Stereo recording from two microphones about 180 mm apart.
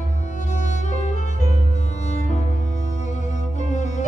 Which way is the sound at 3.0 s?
40° left (ahead or behind).